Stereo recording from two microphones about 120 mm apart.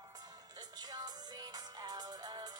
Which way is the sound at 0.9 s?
35° right (ahead or behind).